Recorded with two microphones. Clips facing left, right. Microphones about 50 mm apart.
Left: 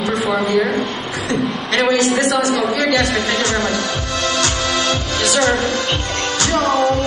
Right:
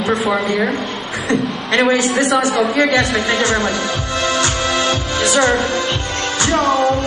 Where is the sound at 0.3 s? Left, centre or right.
Centre.